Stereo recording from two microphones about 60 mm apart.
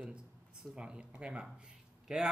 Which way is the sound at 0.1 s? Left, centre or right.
Centre.